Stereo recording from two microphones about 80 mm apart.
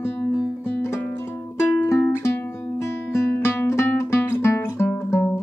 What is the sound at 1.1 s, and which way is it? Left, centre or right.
Music, left.